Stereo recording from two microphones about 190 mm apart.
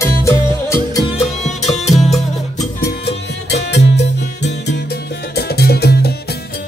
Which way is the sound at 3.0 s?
60° left (ahead or behind).